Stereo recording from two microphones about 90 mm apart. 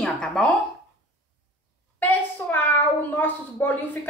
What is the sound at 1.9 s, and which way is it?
Speech, 20° left (ahead or behind).